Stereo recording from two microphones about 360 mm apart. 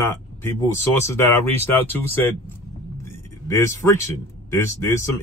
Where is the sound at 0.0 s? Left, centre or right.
Centre.